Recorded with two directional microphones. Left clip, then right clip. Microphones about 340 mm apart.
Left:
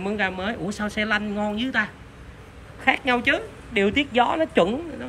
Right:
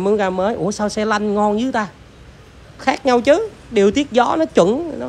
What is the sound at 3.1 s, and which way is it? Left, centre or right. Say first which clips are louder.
Speech: right 8 dB; centre.